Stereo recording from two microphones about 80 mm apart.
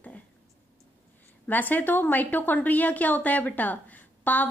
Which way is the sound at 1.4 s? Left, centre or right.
Left.